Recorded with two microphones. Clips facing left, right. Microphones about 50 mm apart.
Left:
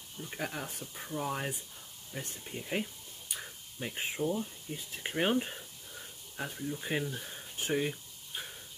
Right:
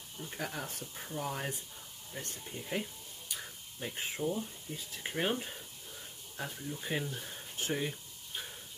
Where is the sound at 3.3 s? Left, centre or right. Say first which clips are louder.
Left 3 dB; centre.